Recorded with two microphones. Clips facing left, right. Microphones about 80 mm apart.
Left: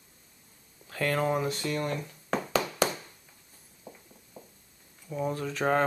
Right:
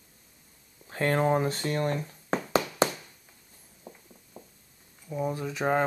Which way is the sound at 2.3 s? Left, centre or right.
Right.